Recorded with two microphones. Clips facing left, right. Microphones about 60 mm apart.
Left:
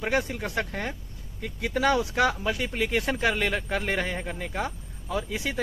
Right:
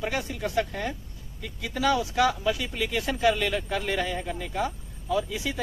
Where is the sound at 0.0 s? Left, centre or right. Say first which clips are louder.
Left 2 dB; left.